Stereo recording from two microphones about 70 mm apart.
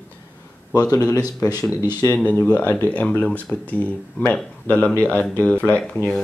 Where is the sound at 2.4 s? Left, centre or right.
Left.